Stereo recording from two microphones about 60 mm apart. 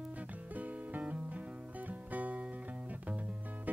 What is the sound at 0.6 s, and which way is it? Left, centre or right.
Music, right.